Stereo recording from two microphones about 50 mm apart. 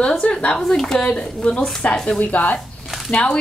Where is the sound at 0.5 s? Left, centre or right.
Centre.